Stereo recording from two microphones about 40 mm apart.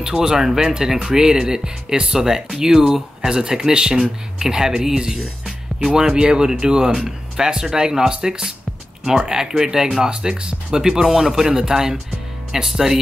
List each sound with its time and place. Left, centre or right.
0.0 s speech: centre